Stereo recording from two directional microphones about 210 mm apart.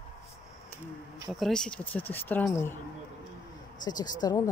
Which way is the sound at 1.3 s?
Centre (ahead or behind).